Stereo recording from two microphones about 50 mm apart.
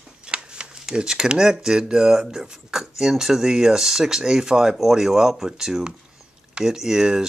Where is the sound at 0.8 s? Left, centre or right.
Centre.